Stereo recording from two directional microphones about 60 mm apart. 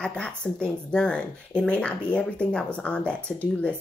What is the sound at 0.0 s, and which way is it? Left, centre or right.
Speech, centre.